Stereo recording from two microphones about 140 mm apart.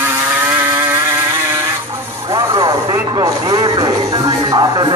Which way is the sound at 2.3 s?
30° right (ahead or behind).